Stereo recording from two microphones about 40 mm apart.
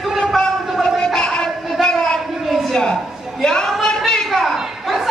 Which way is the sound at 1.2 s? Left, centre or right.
Left.